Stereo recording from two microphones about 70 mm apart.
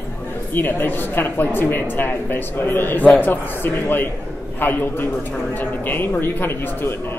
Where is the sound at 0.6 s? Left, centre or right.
Left.